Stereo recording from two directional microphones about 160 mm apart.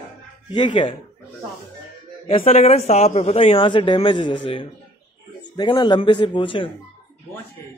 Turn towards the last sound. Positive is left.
turn(degrees=30)  # may be behind; listen again after turning